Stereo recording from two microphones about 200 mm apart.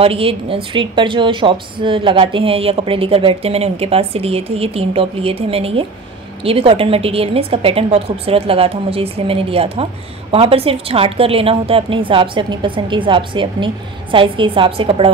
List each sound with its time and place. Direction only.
0.0 s a woman's voice: 30° right (ahead or behind)